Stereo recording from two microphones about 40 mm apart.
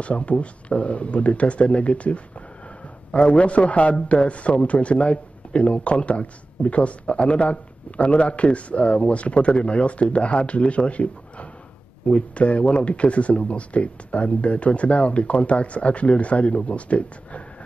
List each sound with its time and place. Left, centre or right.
0.0 s a man's voice: left